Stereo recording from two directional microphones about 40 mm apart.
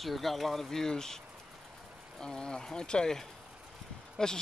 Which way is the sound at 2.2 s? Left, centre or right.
Centre.